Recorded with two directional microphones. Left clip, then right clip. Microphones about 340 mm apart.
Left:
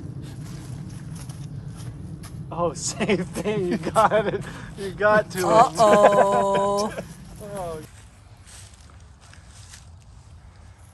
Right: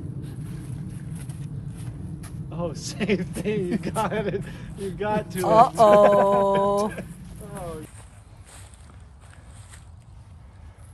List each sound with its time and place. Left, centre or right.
1.1 s vehicle: centre
2.5 s a man's voice: left
5.4 s speech: centre
6.8 s speech: centre